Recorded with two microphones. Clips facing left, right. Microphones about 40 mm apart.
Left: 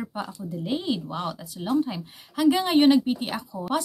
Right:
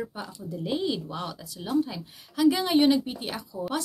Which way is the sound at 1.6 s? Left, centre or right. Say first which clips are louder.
Left 2 dB; centre.